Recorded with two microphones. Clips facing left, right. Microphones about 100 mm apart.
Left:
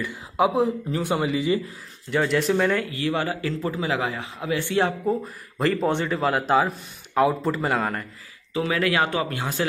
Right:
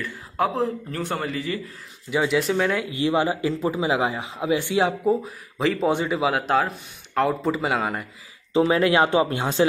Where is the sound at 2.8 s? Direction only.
20° right (ahead or behind).